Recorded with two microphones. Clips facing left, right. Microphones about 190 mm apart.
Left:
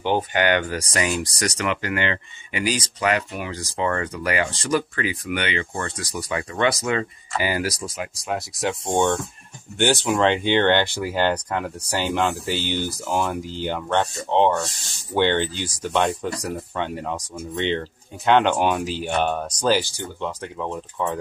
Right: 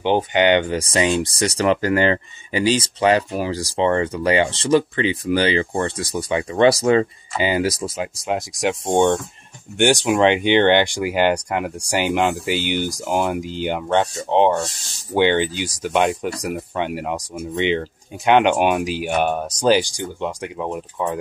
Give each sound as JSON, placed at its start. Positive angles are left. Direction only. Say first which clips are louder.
{"t": 0.0, "sound": "speech", "louder": "right 4 dB", "side_deg": -20}
{"t": 7.3, "sound": "speech", "louder": "right 4 dB", "side_deg": -20}